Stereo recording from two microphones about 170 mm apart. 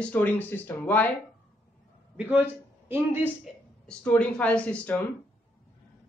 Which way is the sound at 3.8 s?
5° left (ahead or behind).